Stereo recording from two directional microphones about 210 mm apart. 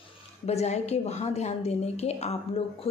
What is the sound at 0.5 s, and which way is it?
A woman's voice, 30° left (ahead or behind).